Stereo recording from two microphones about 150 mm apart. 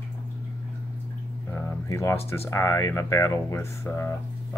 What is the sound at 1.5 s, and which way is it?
Speech, 20° left (ahead or behind).